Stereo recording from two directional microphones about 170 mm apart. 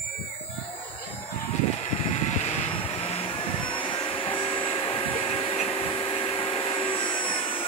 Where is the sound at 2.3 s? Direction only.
40° left (ahead or behind).